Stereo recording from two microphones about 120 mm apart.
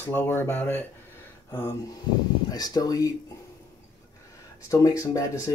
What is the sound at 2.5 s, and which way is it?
Speech, 35° left (ahead or behind).